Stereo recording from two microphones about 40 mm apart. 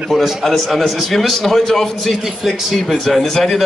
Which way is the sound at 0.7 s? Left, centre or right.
Centre.